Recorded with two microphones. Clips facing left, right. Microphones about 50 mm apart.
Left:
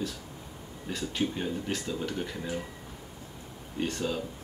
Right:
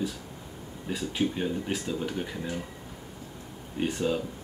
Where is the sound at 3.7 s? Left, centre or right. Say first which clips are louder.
Right 3 dB; centre.